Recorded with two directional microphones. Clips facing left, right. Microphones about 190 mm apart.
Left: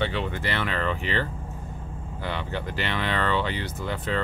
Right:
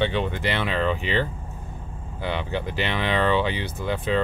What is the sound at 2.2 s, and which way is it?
Speech, 15° right (ahead or behind).